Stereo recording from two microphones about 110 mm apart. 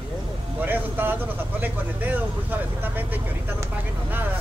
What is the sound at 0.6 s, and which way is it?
Speech, 15° right (ahead or behind).